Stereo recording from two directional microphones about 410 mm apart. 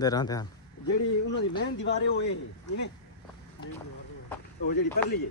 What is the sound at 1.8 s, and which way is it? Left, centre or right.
Speech, left.